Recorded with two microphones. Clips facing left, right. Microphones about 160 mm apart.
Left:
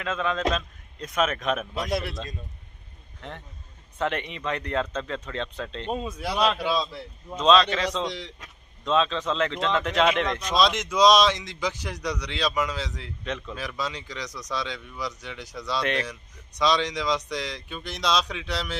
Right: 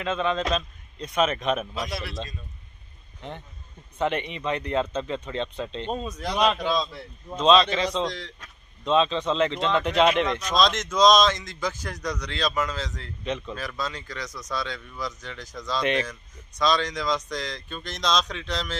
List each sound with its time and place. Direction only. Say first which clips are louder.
0.0 s speech: right 1 dB; centre (ahead or behind)
1.9 s a man's voice: left 6 dB; 50° left (ahead or behind)
3.2 s speech: right 2 dB; centre (ahead or behind)
7.2 s speech: right 1 dB; 5° right (ahead or behind)
8.0 s speech: right 2 dB; 15° left (ahead or behind)
8.8 s speech: right 2 dB; centre (ahead or behind)
13.2 s speech: right 3 dB; centre (ahead or behind)
13.6 s speech: even; 10° left (ahead or behind)
15.8 s speech: right 3 dB; 5° right (ahead or behind)
16.1 s speech: left 1 dB; 15° left (ahead or behind)